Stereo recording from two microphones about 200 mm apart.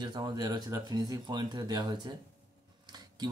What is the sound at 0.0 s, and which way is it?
Speech, 20° right (ahead or behind).